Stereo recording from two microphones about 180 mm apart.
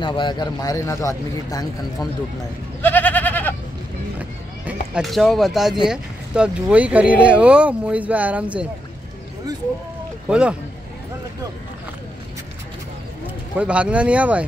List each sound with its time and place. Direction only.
0.0 s speech: 25° left (ahead or behind)
2.8 s goat: 10° left (ahead or behind)
4.2 s horse: 5° right (ahead or behind)
5.9 s speech: 5° right (ahead or behind)
10.2 s speech: 5° right (ahead or behind)
13.6 s speech: 5° right (ahead or behind)